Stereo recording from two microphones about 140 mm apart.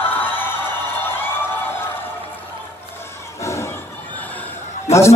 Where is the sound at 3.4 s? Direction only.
20° left (ahead or behind).